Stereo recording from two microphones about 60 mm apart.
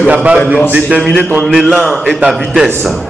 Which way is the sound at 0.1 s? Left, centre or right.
Right.